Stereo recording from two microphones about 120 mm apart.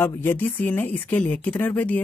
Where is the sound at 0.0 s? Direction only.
20° left (ahead or behind).